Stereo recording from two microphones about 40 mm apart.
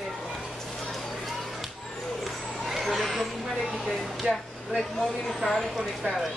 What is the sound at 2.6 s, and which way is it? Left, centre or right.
Vehicle, centre.